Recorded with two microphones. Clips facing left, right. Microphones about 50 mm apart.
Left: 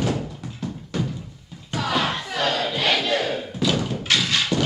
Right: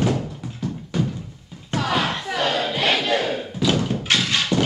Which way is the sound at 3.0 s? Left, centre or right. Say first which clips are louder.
Right 1 dB; centre.